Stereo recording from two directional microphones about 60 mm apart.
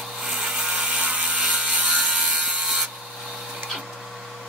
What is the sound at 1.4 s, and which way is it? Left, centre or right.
Mechanisms, centre.